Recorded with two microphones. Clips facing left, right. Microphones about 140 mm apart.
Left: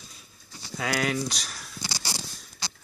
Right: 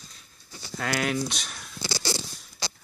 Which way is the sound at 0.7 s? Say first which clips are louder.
Even; centre (ahead or behind).